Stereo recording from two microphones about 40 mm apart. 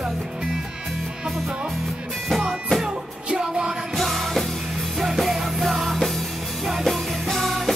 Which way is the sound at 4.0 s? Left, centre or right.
Centre.